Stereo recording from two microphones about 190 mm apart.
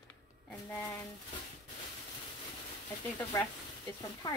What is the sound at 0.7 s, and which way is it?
Speech, 15° left (ahead or behind).